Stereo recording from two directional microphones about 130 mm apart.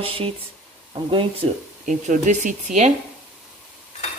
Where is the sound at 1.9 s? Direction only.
70° right (ahead or behind).